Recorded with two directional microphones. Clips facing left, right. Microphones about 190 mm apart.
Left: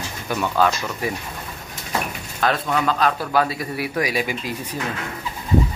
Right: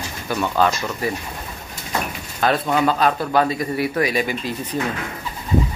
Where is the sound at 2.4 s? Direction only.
Centre (ahead or behind).